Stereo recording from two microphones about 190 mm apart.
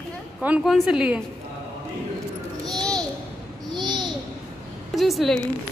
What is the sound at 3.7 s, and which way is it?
Babbling, 20° right (ahead or behind).